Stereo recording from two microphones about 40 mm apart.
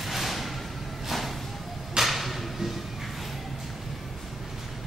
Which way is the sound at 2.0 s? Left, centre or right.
Centre.